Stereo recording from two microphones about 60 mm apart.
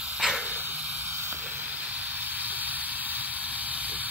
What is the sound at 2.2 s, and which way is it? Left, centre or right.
Hiss, right.